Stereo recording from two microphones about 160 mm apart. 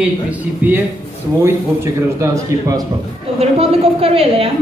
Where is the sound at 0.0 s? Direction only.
10° right (ahead or behind).